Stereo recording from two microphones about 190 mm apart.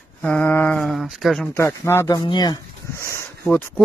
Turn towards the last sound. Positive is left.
turn(degrees=10)  # may be behind; listen again after turning